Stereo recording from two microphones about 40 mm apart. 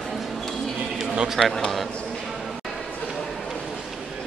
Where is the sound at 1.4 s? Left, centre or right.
Centre.